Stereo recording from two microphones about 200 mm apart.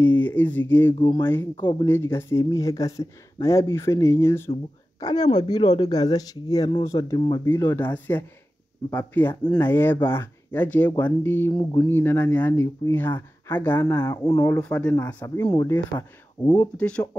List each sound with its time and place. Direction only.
0.0 s speech: 10° left (ahead or behind)
0.9 s speech: 25° left (ahead or behind)
1.2 s speech: 10° left (ahead or behind)
16.7 s speech: 5° left (ahead or behind)